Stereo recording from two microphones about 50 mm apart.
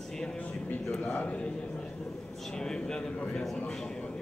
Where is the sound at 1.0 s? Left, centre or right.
Left.